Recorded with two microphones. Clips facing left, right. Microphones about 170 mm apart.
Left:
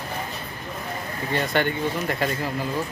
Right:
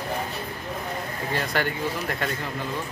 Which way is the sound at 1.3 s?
Centre (ahead or behind).